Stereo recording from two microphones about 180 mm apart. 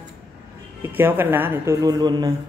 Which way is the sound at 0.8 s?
10° right (ahead or behind).